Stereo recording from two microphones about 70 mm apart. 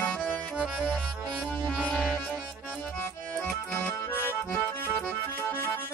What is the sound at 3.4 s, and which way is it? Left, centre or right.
Accordion, centre.